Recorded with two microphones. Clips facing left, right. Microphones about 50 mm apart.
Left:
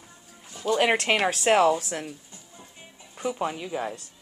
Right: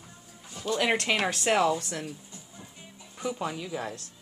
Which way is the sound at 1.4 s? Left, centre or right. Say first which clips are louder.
Left 5 dB; centre.